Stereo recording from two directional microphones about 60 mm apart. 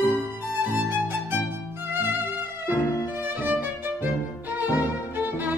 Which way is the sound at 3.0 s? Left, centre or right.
Right.